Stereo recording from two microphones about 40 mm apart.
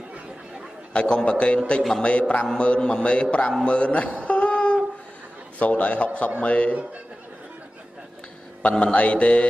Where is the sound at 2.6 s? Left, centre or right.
Left.